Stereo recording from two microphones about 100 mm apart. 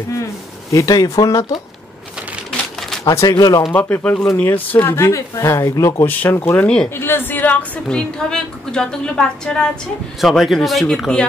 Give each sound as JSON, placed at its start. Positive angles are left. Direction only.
{"t": 0.7, "sound": "speech", "side_deg": 35}
{"t": 3.1, "sound": "speech", "side_deg": 40}
{"t": 3.7, "sound": "a woman's voice", "side_deg": 15}